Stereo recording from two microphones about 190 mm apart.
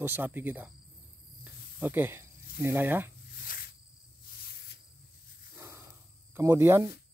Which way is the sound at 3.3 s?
50° left (ahead or behind).